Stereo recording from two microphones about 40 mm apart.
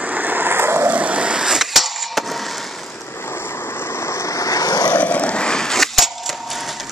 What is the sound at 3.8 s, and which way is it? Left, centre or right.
Vehicle, left.